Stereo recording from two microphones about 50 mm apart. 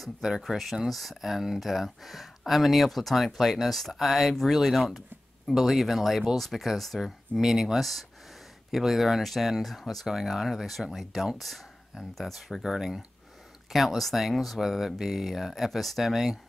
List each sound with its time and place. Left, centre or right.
0.2 s speech: centre